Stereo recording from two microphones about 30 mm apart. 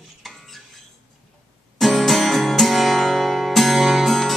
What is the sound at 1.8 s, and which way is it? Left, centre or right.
Music, centre.